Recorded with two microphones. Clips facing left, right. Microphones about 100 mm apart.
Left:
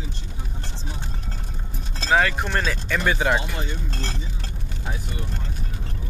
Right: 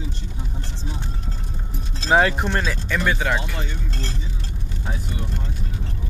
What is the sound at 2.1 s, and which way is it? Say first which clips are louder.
Speech: right 3 dB; 20° right (ahead or behind).